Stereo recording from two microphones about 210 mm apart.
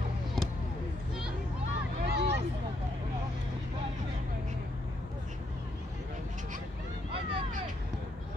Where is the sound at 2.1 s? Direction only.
55° right (ahead or behind).